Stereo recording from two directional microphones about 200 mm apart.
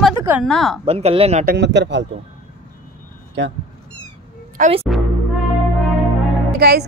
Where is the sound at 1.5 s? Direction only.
60° right (ahead or behind).